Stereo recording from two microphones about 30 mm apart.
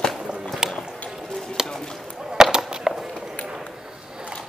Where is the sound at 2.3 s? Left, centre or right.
Right.